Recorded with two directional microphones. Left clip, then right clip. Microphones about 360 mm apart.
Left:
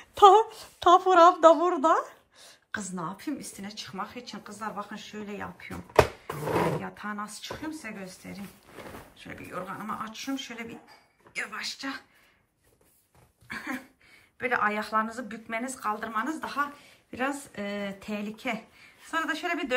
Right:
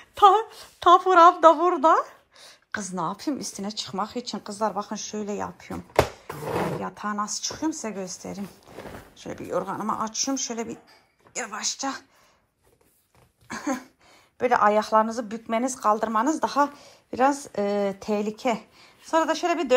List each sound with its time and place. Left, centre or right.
0.0 s a woman's voice: centre
11.3 s a woman's voice: centre
13.5 s a woman's voice: centre